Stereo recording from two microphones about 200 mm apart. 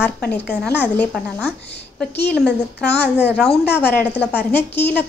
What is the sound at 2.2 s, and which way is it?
A woman's voice, 5° left (ahead or behind).